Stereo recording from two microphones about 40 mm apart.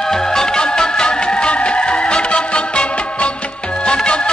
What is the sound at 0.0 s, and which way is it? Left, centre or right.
Music, centre.